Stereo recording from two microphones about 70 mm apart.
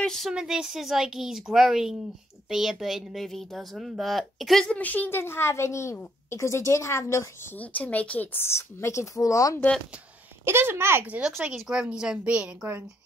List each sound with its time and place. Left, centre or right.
0.0 s speech: centre
0.3 s a woman's voice: centre
4.7 s speech: left
5.2 s a woman's voice: left
7.5 s a woman's voice: left
10.4 s a woman's voice: right
11.1 s speech: centre